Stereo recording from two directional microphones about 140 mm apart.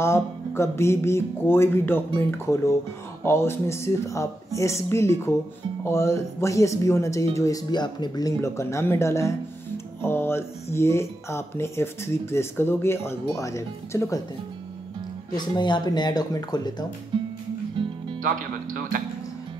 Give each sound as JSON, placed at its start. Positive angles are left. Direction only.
{"t": 0.0, "sound": "music", "side_deg": 20}
{"t": 10.0, "sound": "speech", "side_deg": 15}
{"t": 15.3, "sound": "music", "side_deg": 30}
{"t": 17.1, "sound": "music", "side_deg": -35}
{"t": 18.2, "sound": "speech", "side_deg": -75}